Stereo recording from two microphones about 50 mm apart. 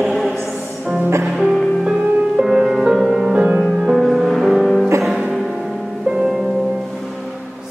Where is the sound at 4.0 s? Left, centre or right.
Centre.